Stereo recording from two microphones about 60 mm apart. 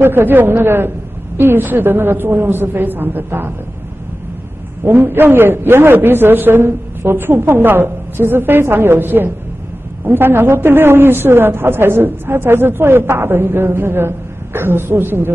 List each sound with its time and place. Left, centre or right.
0.0 s a man's voice: right
4.8 s a man's voice: right